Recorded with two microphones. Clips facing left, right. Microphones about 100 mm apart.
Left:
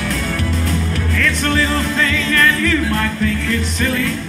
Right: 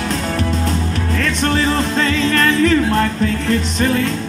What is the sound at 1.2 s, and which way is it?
Music, 30° right (ahead or behind).